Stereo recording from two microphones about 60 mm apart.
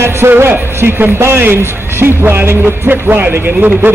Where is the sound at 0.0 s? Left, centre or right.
Right.